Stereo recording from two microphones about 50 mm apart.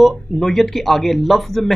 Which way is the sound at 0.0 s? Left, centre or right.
Centre.